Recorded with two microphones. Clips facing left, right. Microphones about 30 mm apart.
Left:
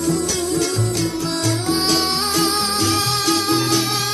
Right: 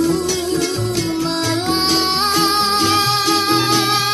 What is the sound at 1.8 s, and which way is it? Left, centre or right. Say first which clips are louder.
Music: right 3 dB; centre.